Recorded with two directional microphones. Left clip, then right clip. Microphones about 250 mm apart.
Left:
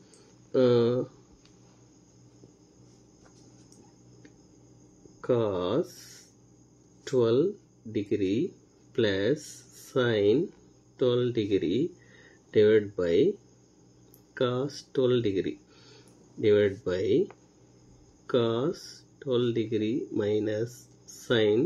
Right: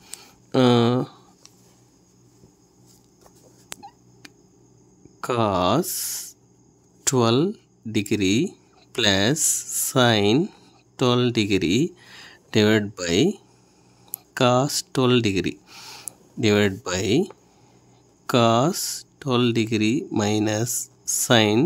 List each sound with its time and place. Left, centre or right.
0.5 s speech: right
5.2 s speech: right
14.3 s speech: right
18.2 s speech: right